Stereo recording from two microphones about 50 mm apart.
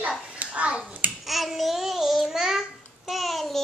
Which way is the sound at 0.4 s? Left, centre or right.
Right.